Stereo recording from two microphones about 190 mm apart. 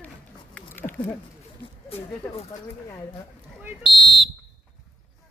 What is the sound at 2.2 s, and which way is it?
Speech, centre (ahead or behind).